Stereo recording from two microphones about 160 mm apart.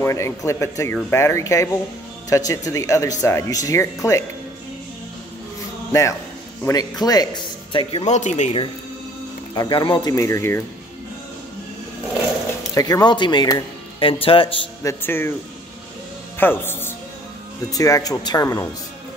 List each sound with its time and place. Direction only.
0.0 s speech: 20° left (ahead or behind)
5.9 s a man's voice: 20° left (ahead or behind)
8.0 s speech: 45° left (ahead or behind)
9.6 s speech: 30° left (ahead or behind)
12.7 s a man's voice: 25° left (ahead or behind)
14.8 s speech: 15° left (ahead or behind)
16.3 s music: 15° left (ahead or behind)
17.6 s speech: 20° left (ahead or behind)